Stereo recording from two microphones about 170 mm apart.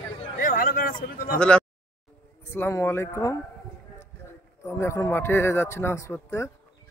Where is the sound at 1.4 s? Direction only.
5° left (ahead or behind).